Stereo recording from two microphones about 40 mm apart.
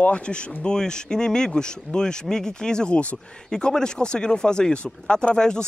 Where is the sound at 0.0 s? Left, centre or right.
Left.